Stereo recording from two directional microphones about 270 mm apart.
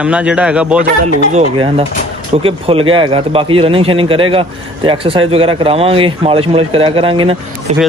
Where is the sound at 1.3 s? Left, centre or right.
Centre.